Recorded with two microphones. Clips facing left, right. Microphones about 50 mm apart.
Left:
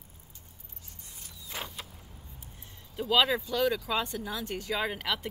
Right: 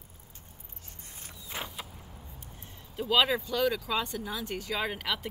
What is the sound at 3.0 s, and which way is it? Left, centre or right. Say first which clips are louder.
Speech: even; centre.